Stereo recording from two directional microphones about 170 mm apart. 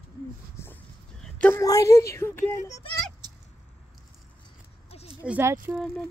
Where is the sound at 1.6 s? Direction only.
20° left (ahead or behind).